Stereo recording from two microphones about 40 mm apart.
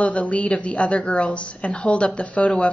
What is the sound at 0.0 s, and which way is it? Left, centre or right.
A woman's voice, left.